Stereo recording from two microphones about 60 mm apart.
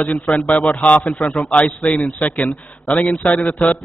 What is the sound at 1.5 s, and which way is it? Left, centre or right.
A man's voice, centre.